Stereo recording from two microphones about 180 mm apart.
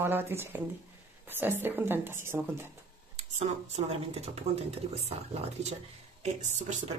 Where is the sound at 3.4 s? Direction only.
35° right (ahead or behind).